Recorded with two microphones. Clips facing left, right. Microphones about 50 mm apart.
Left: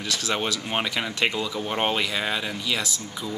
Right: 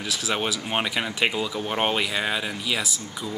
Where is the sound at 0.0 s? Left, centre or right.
Centre.